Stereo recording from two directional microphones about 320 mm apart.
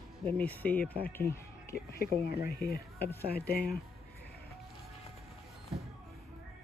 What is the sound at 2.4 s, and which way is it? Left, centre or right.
Speech, left.